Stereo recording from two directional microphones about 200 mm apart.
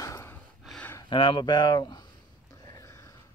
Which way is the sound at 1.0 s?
25° left (ahead or behind).